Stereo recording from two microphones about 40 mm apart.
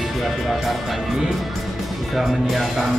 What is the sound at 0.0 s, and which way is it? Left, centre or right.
Speech, centre.